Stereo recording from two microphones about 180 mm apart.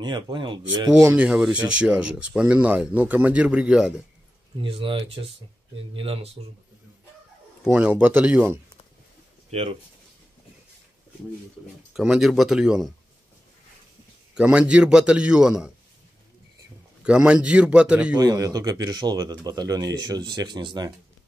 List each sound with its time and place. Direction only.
0.0 s speech: 25° right (ahead or behind); by 3.9 s 5° right (ahead or behind)
4.6 s speech: 30° right (ahead or behind)
7.6 s speech: 5° right (ahead or behind)
9.5 s speech: 35° right (ahead or behind)
11.9 s a man's voice: 5° right (ahead or behind)
14.3 s a man's voice: 5° right (ahead or behind)
17.0 s speech: 5° right (ahead or behind)
18.1 s speech: 20° right (ahead or behind)